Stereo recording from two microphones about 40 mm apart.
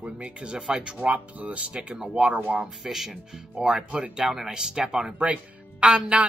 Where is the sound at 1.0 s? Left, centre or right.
Right.